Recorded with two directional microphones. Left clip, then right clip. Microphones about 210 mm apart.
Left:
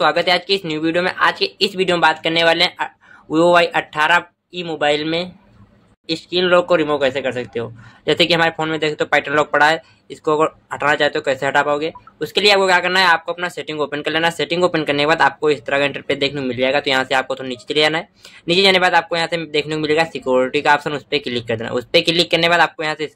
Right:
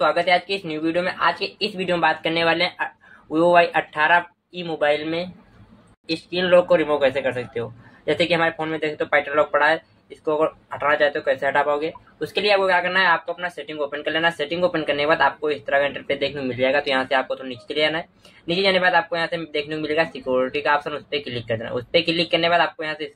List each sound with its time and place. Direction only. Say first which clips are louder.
0.0 s speech: left 3 dB; 45° left (ahead or behind)